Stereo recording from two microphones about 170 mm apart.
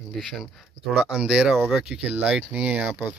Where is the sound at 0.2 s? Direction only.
Centre (ahead or behind).